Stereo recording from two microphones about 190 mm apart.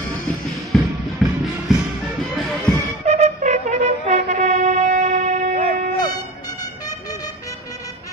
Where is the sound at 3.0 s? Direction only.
35° right (ahead or behind).